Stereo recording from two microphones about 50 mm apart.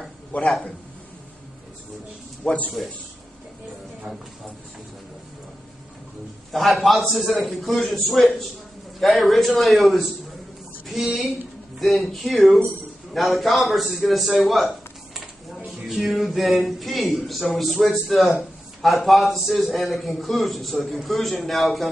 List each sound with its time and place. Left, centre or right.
0.3 s a man's voice: left
2.4 s a man's voice: left
6.5 s a man's voice: centre